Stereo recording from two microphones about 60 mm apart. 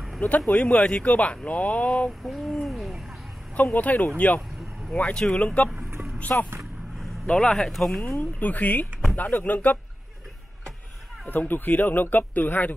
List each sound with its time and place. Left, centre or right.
0.5 s speech: centre
2.2 s owl: centre
3.7 s speech: left
4.4 s vehicle: centre
4.9 s speech: left
7.0 s vehicle: centre
7.7 s speech: centre
8.2 s speech: left
11.2 s speech: left